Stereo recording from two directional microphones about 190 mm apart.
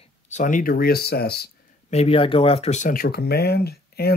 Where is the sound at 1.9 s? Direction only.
30° left (ahead or behind).